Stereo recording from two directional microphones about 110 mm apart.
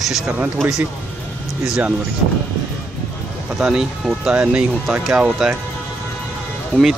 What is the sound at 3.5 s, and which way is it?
Speech, 5° right (ahead or behind).